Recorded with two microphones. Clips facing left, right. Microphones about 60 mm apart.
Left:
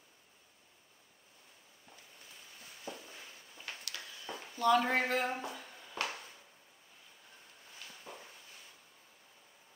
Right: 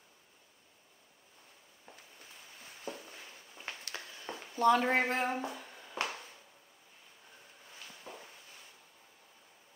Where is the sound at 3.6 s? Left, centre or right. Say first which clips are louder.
Right 2 dB; right.